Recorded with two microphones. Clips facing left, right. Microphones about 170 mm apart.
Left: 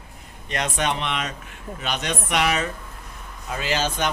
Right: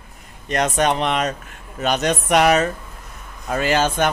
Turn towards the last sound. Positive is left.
turn(degrees=-55)  # may be behind; listen again after turning